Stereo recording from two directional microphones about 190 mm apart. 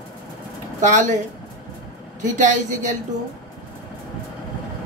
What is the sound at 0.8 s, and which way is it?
Speech, 40° right (ahead or behind).